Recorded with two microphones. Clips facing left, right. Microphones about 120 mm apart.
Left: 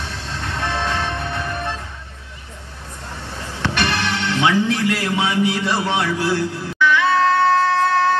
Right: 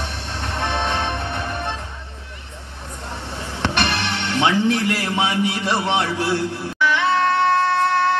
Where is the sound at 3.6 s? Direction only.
20° right (ahead or behind).